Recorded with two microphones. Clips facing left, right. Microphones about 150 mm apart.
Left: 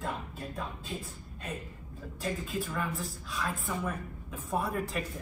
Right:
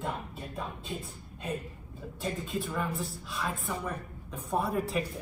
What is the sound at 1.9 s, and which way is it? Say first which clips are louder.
A woman's voice: even; centre (ahead or behind).